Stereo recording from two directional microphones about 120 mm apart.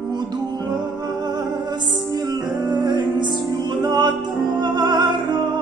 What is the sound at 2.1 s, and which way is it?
Music, 35° right (ahead or behind).